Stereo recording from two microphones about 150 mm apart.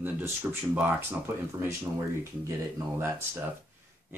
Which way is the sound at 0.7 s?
10° right (ahead or behind).